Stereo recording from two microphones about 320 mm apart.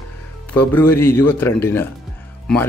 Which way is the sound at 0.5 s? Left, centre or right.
Centre.